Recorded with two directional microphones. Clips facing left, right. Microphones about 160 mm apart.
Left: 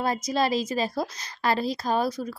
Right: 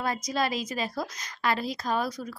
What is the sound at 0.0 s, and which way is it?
A woman's voice, 30° left (ahead or behind).